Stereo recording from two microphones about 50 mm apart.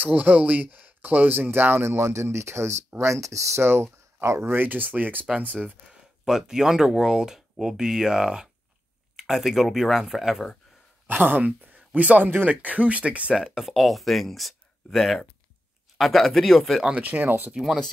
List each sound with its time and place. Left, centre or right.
0.0 s speech: right
3.0 s speech: right
4.5 s speech: right
5.9 s a sound: centre
6.4 s speech: centre
11.1 s speech: right
13.3 s speech: centre
17.0 s speech: right
17.6 s speech: centre